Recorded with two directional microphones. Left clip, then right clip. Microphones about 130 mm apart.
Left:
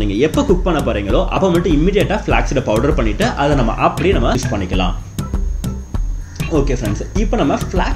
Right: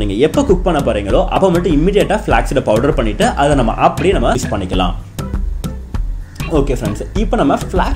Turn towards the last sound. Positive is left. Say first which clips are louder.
# right 3 dB
turn(degrees=-35)  # may be behind; listen again after turning